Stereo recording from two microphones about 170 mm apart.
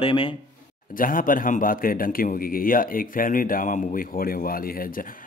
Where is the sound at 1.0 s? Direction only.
55° left (ahead or behind).